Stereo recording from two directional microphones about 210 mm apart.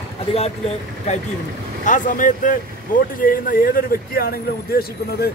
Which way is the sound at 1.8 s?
35° left (ahead or behind).